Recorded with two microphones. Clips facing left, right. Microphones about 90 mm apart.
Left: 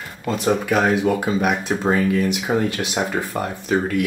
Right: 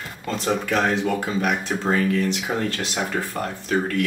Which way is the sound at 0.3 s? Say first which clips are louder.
Left 4 dB; 10° left (ahead or behind).